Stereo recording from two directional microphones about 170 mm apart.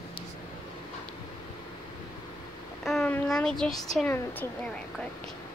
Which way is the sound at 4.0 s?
10° left (ahead or behind).